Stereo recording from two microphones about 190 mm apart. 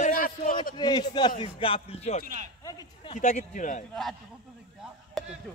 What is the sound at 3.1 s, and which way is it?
Speech, 40° left (ahead or behind).